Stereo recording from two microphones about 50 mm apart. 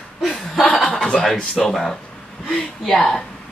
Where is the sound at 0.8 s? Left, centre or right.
Centre.